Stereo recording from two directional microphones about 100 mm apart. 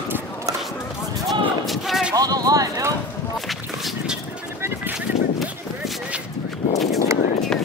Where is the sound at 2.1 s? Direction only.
40° right (ahead or behind).